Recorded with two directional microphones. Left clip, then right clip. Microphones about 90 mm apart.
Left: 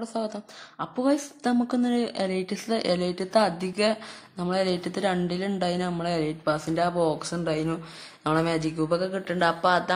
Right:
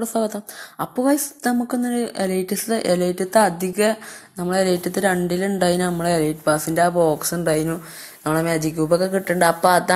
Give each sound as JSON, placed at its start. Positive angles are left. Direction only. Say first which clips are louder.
{"t": 0.0, "sound": "speech", "louder": "right 8 dB", "side_deg": -65}
{"t": 0.9, "sound": "a woman's voice", "louder": "right 5 dB", "side_deg": -40}
{"t": 1.9, "sound": "speech", "louder": "right 3 dB", "side_deg": -25}
{"t": 2.1, "sound": "a woman's voice", "louder": "right 6 dB", "side_deg": -40}
{"t": 5.6, "sound": "speech", "louder": "right 8 dB", "side_deg": -60}
{"t": 7.6, "sound": "a woman's voice", "louder": "right 5 dB", "side_deg": -35}
{"t": 9.0, "sound": "speech", "louder": "right 7 dB", "side_deg": -50}